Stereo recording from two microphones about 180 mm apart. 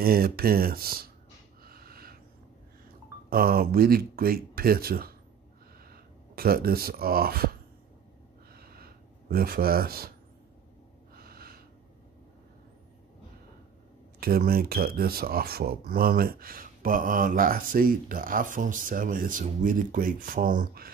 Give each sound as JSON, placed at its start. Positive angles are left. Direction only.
{"t": 0.0, "sound": "speech", "side_deg": -55}
{"t": 1.6, "sound": "snort", "side_deg": -55}
{"t": 3.3, "sound": "speech", "side_deg": -55}
{"t": 8.5, "sound": "a sound", "side_deg": -55}
{"t": 11.1, "sound": "snort", "side_deg": -55}
{"t": 14.2, "sound": "speech", "side_deg": -55}